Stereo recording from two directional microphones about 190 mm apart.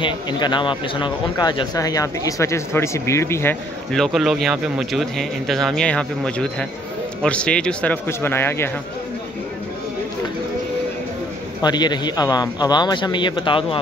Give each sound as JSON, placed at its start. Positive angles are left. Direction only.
{"t": 0.0, "sound": "speech", "side_deg": 25}
{"t": 3.9, "sound": "speech", "side_deg": 0}
{"t": 11.6, "sound": "speech", "side_deg": 20}